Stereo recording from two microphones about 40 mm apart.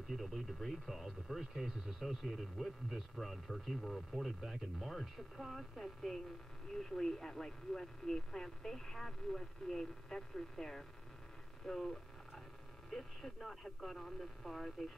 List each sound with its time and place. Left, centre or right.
0.1 s speech: centre
11.6 s a sound: centre
12.9 s speech: centre